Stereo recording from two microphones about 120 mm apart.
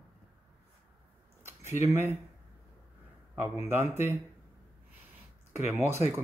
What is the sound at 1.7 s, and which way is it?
Speech, 20° right (ahead or behind).